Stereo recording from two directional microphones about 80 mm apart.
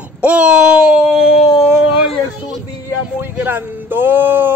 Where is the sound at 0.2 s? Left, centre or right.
Centre.